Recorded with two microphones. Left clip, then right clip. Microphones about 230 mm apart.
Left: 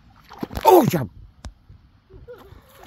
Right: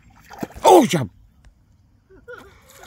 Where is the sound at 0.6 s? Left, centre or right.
Centre.